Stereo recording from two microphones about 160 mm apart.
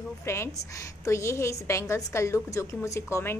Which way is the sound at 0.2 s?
15° left (ahead or behind).